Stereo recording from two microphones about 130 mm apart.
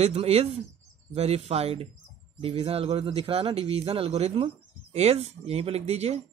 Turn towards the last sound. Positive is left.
turn(degrees=-55)  # may be behind; listen again after turning